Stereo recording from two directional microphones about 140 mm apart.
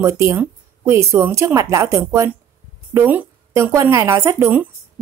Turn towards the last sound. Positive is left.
turn(degrees=-15)  # may be behind; listen again after turning